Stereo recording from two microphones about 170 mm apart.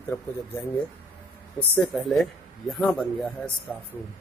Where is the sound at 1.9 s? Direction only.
Centre (ahead or behind).